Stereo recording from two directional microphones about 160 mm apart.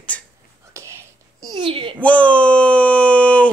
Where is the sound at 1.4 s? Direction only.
25° right (ahead or behind).